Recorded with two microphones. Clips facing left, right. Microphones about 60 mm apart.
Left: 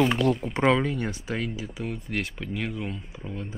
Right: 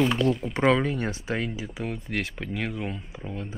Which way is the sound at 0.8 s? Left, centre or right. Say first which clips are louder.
Right 1 dB; right.